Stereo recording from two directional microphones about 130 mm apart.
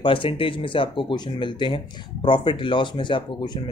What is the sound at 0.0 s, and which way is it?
Speech, 40° left (ahead or behind).